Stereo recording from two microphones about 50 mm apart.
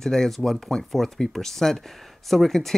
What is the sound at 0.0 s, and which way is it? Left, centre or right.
Speech, centre.